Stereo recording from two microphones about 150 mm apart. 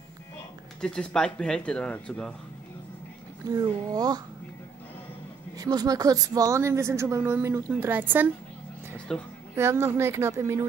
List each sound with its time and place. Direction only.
0.7 s speech: 5° left (ahead or behind)
3.4 s speech: 25° right (ahead or behind)
5.6 s speech: 25° right (ahead or behind)
9.1 s speech: 5° left (ahead or behind)
9.6 s speech: 15° right (ahead or behind)